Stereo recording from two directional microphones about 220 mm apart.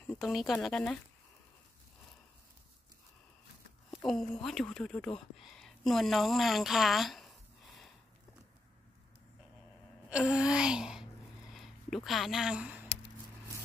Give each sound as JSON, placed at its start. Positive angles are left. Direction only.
{"t": 0.0, "sound": "a sound", "side_deg": 0}
{"t": 0.5, "sound": "speech", "side_deg": 0}
{"t": 4.0, "sound": "speech", "side_deg": 0}
{"t": 10.0, "sound": "wail", "side_deg": -5}
{"t": 11.5, "sound": "speech", "side_deg": 0}